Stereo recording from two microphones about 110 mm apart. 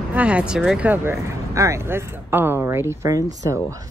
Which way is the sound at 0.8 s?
25° right (ahead or behind).